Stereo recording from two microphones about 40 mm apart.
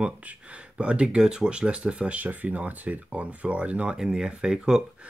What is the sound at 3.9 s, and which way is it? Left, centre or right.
Speech, centre.